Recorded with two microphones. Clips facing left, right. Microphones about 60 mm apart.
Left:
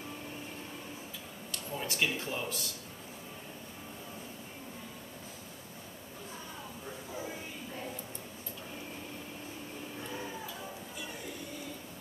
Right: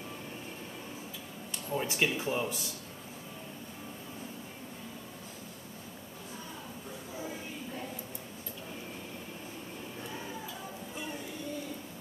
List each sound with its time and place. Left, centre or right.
1.5 s speech: centre